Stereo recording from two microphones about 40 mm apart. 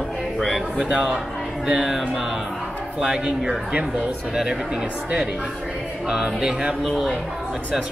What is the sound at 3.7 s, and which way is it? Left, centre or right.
Speech, right.